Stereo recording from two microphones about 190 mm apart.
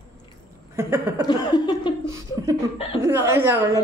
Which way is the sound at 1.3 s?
20° left (ahead or behind).